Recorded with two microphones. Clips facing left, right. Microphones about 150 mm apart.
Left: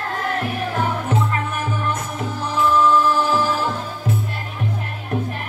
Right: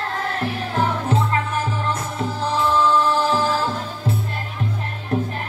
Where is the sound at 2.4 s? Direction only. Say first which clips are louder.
Left 2 dB; 30° right (ahead or behind).